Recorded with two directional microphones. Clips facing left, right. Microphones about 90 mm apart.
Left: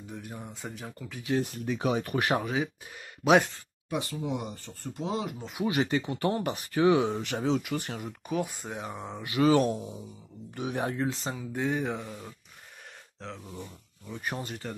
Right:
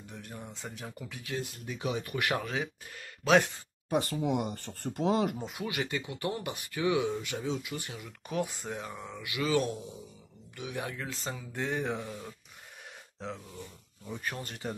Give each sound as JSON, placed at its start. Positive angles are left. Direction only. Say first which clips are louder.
{"t": 0.1, "sound": "speech", "louder": "left 3 dB", "side_deg": 10}
{"t": 1.3, "sound": "speech", "louder": "left 9 dB", "side_deg": 50}
{"t": 2.1, "sound": "speech", "louder": "left 2 dB", "side_deg": 30}
{"t": 2.4, "sound": "speech", "louder": "left 4 dB", "side_deg": 5}
{"t": 3.2, "sound": "speech", "louder": "left 3 dB", "side_deg": 20}
{"t": 3.9, "sound": "speech", "louder": "right 3 dB", "side_deg": -50}
{"t": 5.7, "sound": "speech", "louder": "left 8 dB", "side_deg": 30}
{"t": 7.2, "sound": "speech", "louder": "left 6 dB", "side_deg": 55}
{"t": 8.3, "sound": "speech", "louder": "left 1 dB", "side_deg": 5}
{"t": 8.8, "sound": "speech", "louder": "left 4 dB", "side_deg": 30}
{"t": 11.2, "sound": "speech", "louder": "left 4 dB", "side_deg": 10}
{"t": 14.2, "sound": "speech", "louder": "left 4 dB", "side_deg": 20}